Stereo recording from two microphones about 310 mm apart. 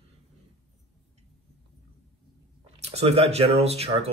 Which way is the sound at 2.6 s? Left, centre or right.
Centre.